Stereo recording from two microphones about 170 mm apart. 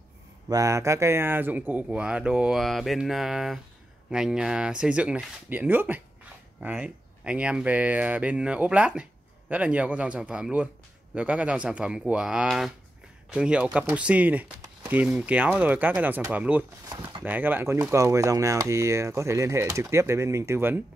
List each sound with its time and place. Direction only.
0.5 s speech: 20° right (ahead or behind)